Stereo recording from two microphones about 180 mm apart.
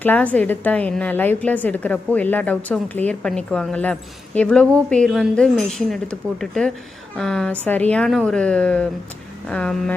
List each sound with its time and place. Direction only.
0.0 s a woman's voice: 10° left (ahead or behind)